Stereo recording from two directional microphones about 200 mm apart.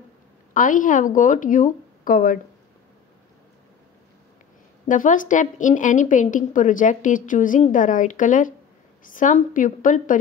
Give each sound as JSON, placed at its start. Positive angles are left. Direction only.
{"t": 0.5, "sound": "a woman's voice", "side_deg": 40}
{"t": 4.8, "sound": "a woman's voice", "side_deg": 40}